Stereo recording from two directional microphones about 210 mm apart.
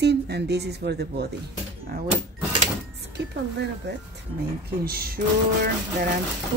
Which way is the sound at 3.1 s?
55° right (ahead or behind).